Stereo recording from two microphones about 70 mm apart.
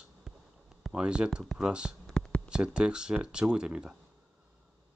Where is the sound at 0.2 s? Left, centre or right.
Centre.